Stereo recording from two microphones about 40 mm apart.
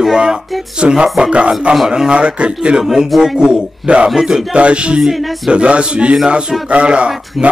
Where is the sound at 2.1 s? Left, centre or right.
Right.